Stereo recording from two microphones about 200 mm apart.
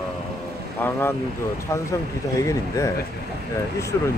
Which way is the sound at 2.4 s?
15° left (ahead or behind).